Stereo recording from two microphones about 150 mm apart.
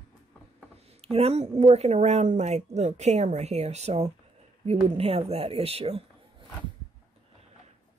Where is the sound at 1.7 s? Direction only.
45° right (ahead or behind).